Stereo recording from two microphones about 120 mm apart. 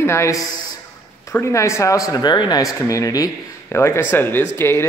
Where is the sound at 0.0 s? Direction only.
25° left (ahead or behind).